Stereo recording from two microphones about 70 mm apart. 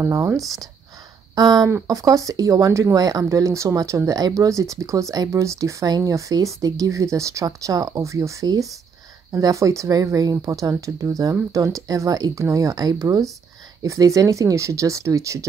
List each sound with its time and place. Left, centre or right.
0.0 s speech: right
1.3 s speech: right
1.9 s speech: right
4.1 s speech: right